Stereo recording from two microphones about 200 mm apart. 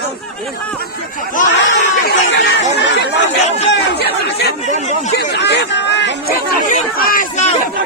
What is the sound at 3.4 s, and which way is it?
Speech, 35° left (ahead or behind).